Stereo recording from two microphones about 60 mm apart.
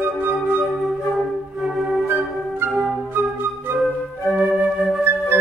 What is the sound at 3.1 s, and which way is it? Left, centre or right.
Flute, right.